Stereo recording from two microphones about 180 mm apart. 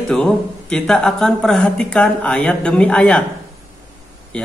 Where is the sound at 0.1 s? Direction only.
5° left (ahead or behind).